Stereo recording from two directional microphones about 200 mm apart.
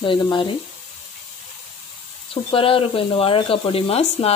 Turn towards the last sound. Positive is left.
turn(degrees=30)  # may be behind; listen again after turning